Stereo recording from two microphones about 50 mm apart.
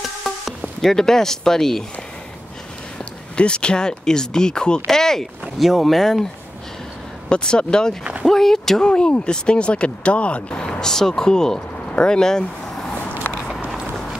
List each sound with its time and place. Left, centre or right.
0.7 s speech: centre
3.3 s speech: centre
7.2 s speech: centre
8.8 s speech: centre
13.2 s biting: left